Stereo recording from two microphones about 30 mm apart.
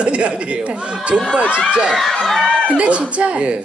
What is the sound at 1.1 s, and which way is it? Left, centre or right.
Speech, right.